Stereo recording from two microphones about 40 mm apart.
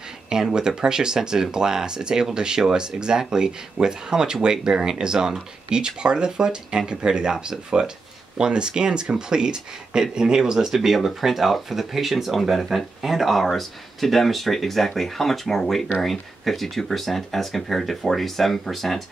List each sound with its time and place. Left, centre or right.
0.3 s speech: centre